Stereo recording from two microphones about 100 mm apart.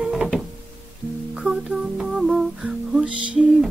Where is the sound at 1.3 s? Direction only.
5° right (ahead or behind).